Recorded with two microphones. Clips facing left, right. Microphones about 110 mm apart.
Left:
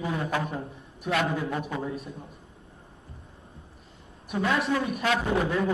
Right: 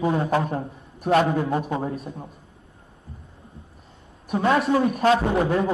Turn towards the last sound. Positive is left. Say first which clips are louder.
# right 4 dB
turn(degrees=-30)  # may be behind; listen again after turning